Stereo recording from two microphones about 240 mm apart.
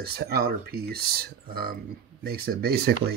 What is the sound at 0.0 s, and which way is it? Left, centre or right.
Speech, right.